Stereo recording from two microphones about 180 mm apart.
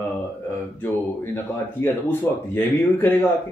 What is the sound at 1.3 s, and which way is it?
Speech, 10° left (ahead or behind).